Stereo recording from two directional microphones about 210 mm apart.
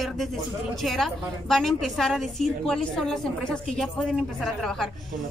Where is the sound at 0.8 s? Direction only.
Centre (ahead or behind).